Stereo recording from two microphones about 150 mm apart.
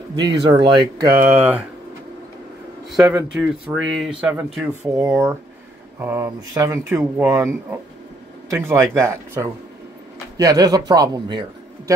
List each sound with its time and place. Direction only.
0.1 s speech: 30° right (ahead or behind)
1.1 s speech: 15° right (ahead or behind)
2.9 s speech: 5° right (ahead or behind)
5.1 s speech: 15° right (ahead or behind)
8.5 s a man's voice: 20° right (ahead or behind)